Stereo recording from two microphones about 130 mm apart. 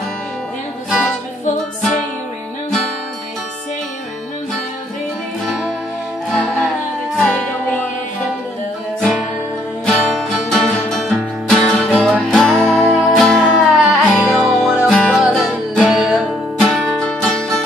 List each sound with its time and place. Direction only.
0.8 s music: centre (ahead or behind)
7.2 s music: centre (ahead or behind)
9.8 s music: centre (ahead or behind)